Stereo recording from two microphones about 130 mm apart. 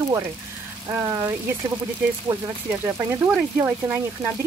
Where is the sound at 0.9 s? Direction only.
25° right (ahead or behind).